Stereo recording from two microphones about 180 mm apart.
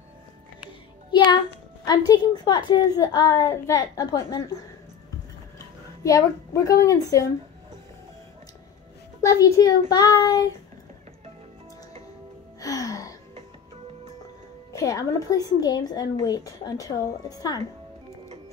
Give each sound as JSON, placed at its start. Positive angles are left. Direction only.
{"t": 1.1, "sound": "music", "side_deg": 25}
{"t": 1.9, "sound": "a child's voice", "side_deg": 20}
{"t": 6.0, "sound": "a woman's voice", "side_deg": 20}
{"t": 9.2, "sound": "a child's voice", "side_deg": 20}
{"t": 12.5, "sound": "music", "side_deg": 20}
{"t": 14.7, "sound": "a child's voice", "side_deg": 20}